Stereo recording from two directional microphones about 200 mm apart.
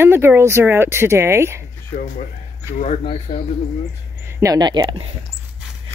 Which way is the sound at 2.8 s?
30° left (ahead or behind).